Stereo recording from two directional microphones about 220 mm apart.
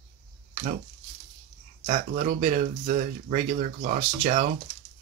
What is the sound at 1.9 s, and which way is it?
Speech, 35° right (ahead or behind).